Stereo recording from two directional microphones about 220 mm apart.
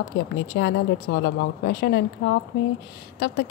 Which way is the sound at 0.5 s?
50° left (ahead or behind).